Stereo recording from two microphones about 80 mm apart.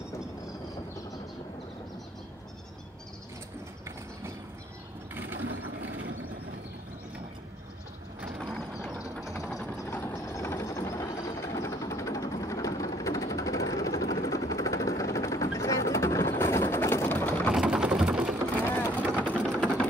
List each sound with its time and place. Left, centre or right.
5.1 s ratchet: right
8.4 s mechanisms: centre
9.4 s vehicle: centre
10.1 s vehicle: left
17.6 s a sound: centre
18.7 s vehicle: left
19.4 s sewing machine: centre